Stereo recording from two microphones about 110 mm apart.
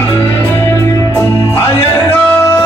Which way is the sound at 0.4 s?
20° left (ahead or behind).